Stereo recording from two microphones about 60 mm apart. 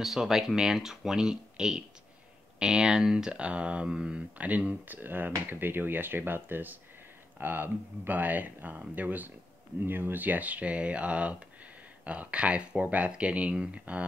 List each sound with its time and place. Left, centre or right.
0.0 s speech: centre